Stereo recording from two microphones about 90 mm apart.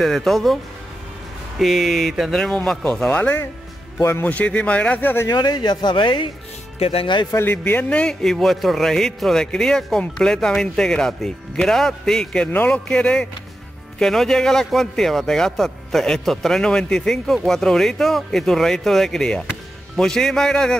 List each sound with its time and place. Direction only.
0.0 s a man's voice: centre (ahead or behind)
1.6 s a man's voice: centre (ahead or behind); by 3.3 s 15° left (ahead or behind)
4.0 s a man's voice: 30° left (ahead or behind)
4.3 s a man's voice: 15° left (ahead or behind)
5.3 s speech: 50° left (ahead or behind); by 7.2 s 75° left (ahead or behind)
7.2 s a man's voice: 30° left (ahead or behind)
7.5 s a man's voice: 15° left (ahead or behind)
12.4 s a man's voice: 20° left (ahead or behind)